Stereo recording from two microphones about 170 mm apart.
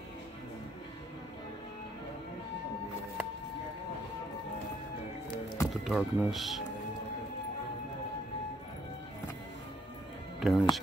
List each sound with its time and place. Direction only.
5.7 s speech: centre (ahead or behind)
10.4 s speech: centre (ahead or behind)